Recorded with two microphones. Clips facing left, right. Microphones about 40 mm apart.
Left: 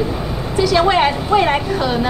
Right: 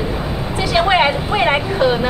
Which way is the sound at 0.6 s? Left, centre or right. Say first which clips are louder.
Left 1 dB; centre.